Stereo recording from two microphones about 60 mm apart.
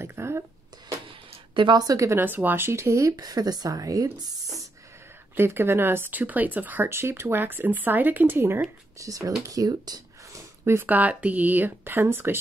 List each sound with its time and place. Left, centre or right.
0.0 s a sound: right
1.8 s speech: right
2.2 s a woman's voice: right
5.3 s speech: right
6.9 s speech: right
8.9 s speech: right
9.5 s speech: right
10.6 s speech: right
10.9 s speech: right